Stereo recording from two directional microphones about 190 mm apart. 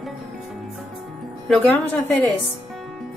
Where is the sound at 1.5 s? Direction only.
10° left (ahead or behind).